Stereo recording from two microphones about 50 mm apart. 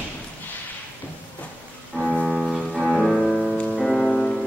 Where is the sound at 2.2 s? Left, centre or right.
Centre.